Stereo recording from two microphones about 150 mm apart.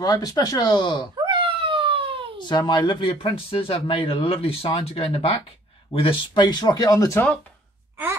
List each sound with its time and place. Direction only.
0.0 s speech: 25° left (ahead or behind)
1.2 s a sound: 35° right (ahead or behind)
2.4 s speech: 30° left (ahead or behind)